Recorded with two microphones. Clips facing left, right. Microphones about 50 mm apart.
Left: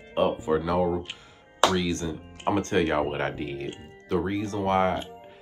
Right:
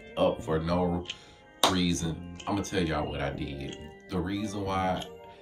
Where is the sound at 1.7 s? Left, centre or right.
Left.